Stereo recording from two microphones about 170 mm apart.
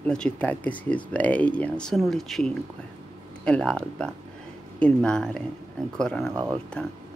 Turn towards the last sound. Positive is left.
turn(degrees=-20)  # may be behind; listen again after turning